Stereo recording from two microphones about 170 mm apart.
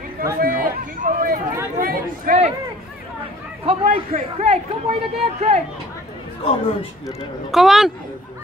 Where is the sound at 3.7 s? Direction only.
35° right (ahead or behind).